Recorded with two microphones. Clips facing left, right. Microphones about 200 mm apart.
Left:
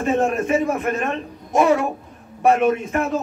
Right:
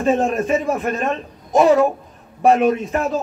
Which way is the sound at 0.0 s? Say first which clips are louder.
Right 2 dB; 35° right (ahead or behind).